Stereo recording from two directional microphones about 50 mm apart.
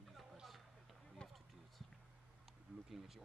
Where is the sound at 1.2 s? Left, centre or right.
Left.